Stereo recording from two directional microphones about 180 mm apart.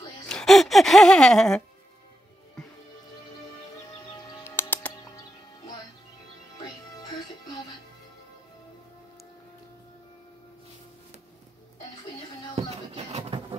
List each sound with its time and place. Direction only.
0.3 s speech: centre (ahead or behind)
4.5 s music: 10° left (ahead or behind)
12.5 s a sound: 30° right (ahead or behind)